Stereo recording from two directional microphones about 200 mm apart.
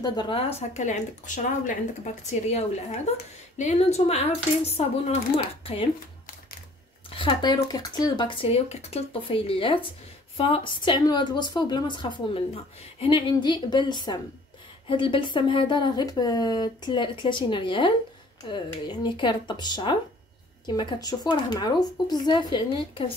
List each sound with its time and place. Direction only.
0.0 s speech: 20° left (ahead or behind)
7.1 s speech: 25° left (ahead or behind)